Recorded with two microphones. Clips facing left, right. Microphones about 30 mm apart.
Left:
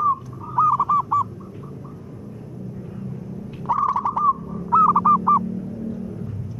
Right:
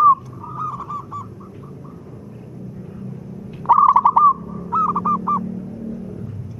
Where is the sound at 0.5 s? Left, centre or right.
Left.